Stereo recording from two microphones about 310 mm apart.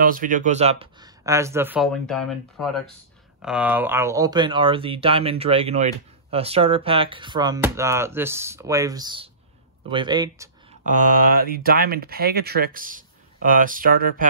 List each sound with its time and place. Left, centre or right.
0.0 s speech: right; by 10.5 s centre
10.9 s speech: right